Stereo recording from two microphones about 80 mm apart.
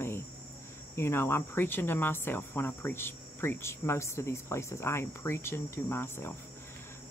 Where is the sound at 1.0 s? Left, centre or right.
Left.